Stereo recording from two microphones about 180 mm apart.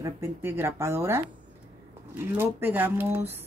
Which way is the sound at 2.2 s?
15° right (ahead or behind).